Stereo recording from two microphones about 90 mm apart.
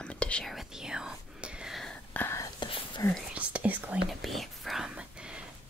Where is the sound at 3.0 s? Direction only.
35° left (ahead or behind).